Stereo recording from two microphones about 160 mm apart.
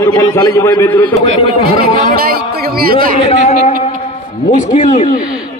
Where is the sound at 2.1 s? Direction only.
70° right (ahead or behind).